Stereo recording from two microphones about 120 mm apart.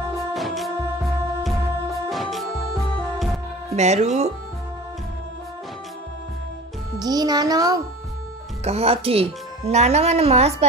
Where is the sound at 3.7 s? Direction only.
70° right (ahead or behind).